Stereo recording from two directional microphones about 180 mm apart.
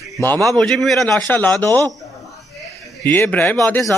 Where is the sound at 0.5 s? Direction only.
Centre (ahead or behind).